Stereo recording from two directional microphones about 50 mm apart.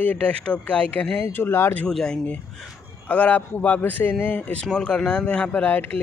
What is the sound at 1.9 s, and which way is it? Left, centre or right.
Speech, centre.